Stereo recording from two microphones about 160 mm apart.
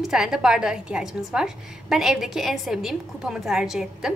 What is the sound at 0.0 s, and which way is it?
A woman's voice, centre (ahead or behind).